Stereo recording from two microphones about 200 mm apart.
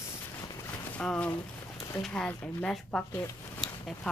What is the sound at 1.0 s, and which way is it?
Speech, 5° left (ahead or behind).